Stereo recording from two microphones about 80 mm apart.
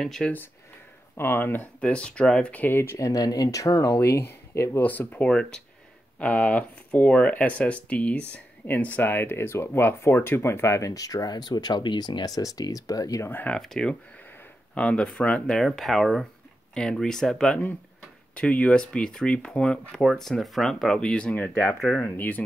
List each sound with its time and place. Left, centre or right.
0.0 s speech: centre
1.1 s speech: left
1.8 s speech: centre; by 3.0 s left
3.0 s speech: left
4.8 s speech: centre; by 10.9 s left
10.9 s speech: left
12.4 s speech: left
13.5 s speech: centre
22.0 s speech: left